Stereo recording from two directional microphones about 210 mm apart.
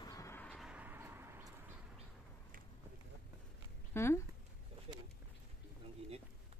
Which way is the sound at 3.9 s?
10° left (ahead or behind).